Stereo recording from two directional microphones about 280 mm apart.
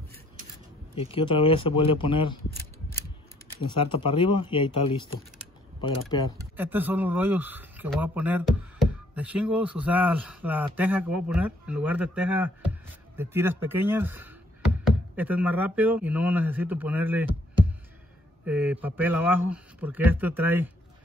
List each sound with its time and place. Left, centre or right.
0.9 s speech: centre
3.7 s speech: centre
6.5 s speech: centre
18.4 s speech: centre